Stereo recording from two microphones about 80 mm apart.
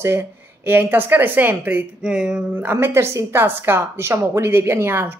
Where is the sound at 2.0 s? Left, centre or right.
Centre.